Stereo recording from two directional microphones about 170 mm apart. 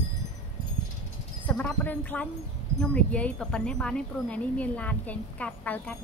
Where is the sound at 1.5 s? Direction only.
10° left (ahead or behind).